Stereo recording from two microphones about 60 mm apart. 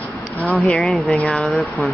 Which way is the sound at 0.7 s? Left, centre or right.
Centre.